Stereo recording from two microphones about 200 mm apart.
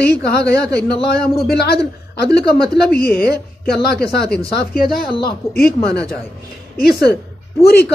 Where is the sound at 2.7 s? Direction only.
50° left (ahead or behind).